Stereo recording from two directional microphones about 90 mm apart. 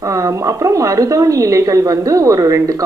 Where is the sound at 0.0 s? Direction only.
35° right (ahead or behind).